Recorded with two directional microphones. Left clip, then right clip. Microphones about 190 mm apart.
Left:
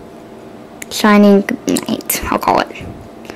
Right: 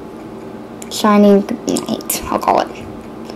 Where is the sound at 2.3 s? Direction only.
40° left (ahead or behind).